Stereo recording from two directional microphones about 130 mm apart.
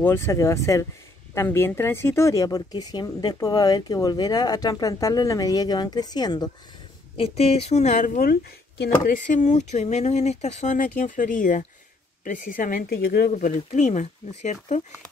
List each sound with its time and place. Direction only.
0.0 s speech: 20° left (ahead or behind)
7.2 s speech: 55° left (ahead or behind); by 12.8 s 90° left
13.3 s speech: 75° left (ahead or behind)